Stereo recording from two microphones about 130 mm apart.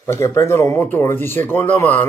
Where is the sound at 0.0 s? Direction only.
20° left (ahead or behind).